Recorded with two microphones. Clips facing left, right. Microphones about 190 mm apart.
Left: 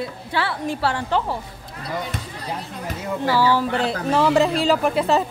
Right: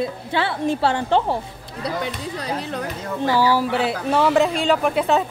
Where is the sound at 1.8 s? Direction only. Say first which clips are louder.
Right 3 dB; 80° right.